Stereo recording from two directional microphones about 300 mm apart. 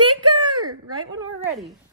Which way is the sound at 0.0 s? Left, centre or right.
Centre.